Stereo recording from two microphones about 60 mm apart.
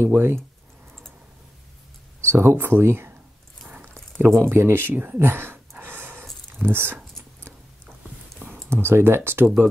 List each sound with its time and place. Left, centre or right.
0.0 s speech: right
2.2 s speech: right
4.4 s speech: right
8.6 s speech: right